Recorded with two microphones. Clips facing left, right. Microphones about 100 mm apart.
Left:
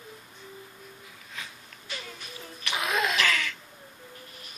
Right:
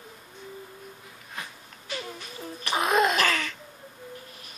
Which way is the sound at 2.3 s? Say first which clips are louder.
Right 5 dB; 35° right (ahead or behind).